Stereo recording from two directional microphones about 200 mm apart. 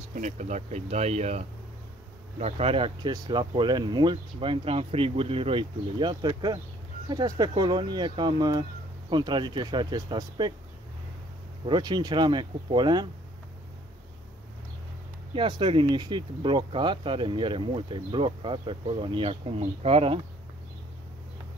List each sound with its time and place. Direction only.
0.1 s speech: 35° right (ahead or behind); by 10.5 s 20° right (ahead or behind)
11.6 s speech: 20° right (ahead or behind)
15.3 s speech: 25° right (ahead or behind)